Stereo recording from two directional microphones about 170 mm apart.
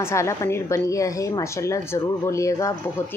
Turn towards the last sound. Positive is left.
turn(degrees=20)  # may be behind; listen again after turning